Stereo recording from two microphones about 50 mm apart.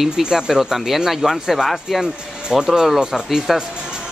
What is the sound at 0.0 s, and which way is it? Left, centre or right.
Speech, centre.